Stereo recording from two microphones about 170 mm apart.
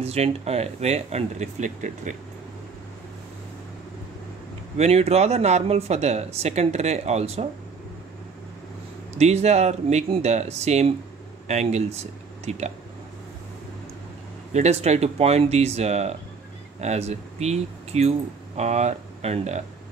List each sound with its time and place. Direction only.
0.0 s speech: 35° right (ahead or behind)
4.7 s speech: 40° right (ahead or behind)
9.2 s speech: 40° right (ahead or behind)
14.5 s speech: 40° right (ahead or behind)